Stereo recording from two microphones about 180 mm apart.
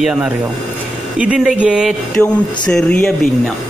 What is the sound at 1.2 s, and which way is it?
Speech, 5° right (ahead or behind).